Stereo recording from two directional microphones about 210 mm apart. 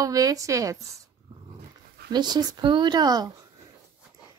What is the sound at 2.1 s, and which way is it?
A child's voice, 20° right (ahead or behind).